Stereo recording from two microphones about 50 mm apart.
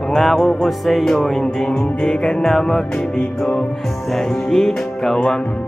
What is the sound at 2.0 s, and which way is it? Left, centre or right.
Music, centre.